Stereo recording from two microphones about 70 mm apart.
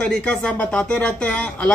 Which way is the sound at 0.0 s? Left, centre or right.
Centre.